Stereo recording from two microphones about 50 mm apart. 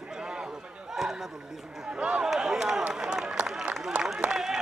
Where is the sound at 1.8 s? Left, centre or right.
Centre.